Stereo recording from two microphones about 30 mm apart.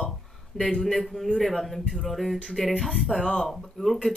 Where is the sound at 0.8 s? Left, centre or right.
Centre.